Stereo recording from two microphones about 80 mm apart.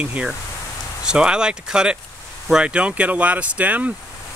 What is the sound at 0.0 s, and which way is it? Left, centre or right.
Speech, centre.